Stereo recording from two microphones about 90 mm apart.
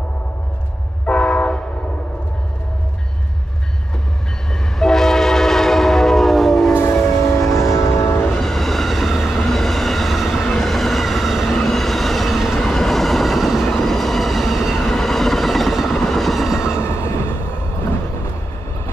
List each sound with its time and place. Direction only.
1.0 s train: 10° left (ahead or behind)
4.7 s train: 5° left (ahead or behind)
7.5 s train: 35° left (ahead or behind)
8.3 s train: 5° left (ahead or behind)
16.7 s train: 30° left (ahead or behind)